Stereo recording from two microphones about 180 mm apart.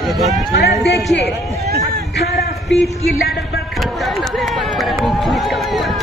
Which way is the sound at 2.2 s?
65° left (ahead or behind).